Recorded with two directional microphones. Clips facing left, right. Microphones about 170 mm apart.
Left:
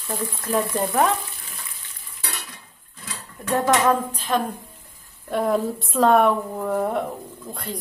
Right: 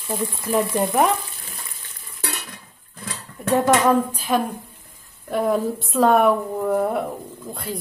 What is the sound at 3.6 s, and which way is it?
A woman's voice, 10° right (ahead or behind).